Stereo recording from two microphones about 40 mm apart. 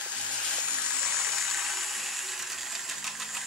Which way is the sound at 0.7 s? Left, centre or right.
Right.